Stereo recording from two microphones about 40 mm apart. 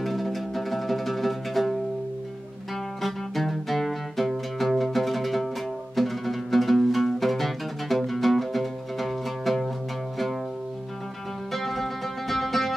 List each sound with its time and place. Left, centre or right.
0.0 s music: centre
3.0 s music: centre
11.5 s music: centre